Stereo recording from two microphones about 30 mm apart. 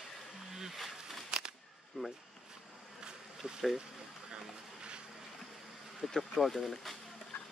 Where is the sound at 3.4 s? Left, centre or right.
Right.